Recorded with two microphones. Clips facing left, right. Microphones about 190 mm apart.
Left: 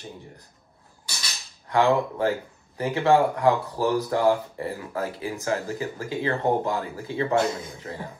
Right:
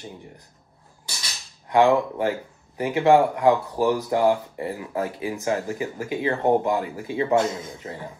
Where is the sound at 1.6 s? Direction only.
20° right (ahead or behind).